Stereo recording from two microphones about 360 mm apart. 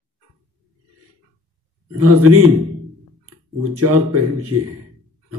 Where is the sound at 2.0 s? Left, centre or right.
Right.